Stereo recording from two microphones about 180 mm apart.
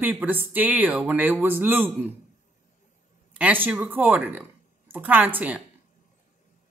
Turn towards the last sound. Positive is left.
turn(degrees=-10)  # may be behind; listen again after turning